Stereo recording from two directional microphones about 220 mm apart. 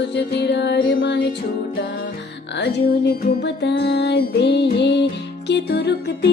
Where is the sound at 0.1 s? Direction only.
50° left (ahead or behind).